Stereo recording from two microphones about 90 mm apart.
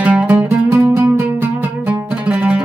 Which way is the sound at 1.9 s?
10° right (ahead or behind).